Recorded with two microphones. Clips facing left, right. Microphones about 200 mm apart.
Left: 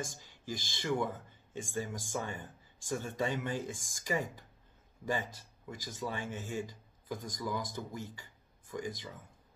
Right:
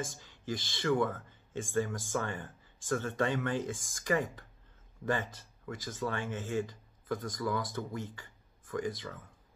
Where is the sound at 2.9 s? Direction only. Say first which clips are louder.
Right 3 dB; 10° left (ahead or behind).